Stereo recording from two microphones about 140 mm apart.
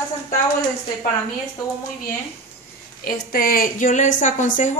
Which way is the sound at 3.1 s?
90° left.